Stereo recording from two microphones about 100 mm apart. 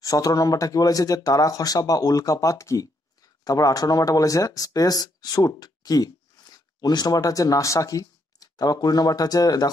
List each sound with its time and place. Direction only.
0.0 s speech: 35° left (ahead or behind)